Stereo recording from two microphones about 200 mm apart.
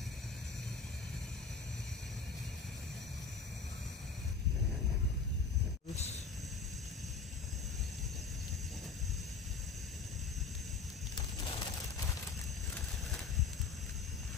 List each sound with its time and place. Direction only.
11.1 s bird: 25° left (ahead or behind)